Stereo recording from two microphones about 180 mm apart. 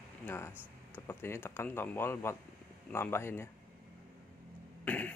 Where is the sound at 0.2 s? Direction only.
10° left (ahead or behind).